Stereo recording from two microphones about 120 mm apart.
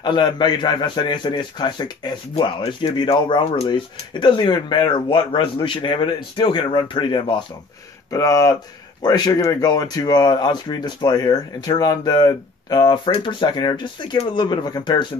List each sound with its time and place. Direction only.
0.0 s speech: 35° left (ahead or behind)
2.3 s speech: 50° left (ahead or behind)
2.8 s speech: 40° left (ahead or behind)
8.1 s speech: 30° left (ahead or behind)